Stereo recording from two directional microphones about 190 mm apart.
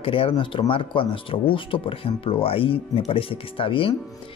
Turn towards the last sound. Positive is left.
turn(degrees=30)  # may be behind; listen again after turning